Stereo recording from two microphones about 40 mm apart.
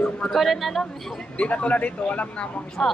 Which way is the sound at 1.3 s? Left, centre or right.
Left.